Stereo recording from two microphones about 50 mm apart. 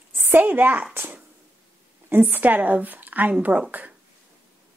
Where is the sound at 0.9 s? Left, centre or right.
Right.